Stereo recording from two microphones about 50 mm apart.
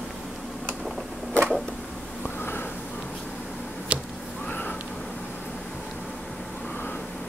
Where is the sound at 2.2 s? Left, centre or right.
Left.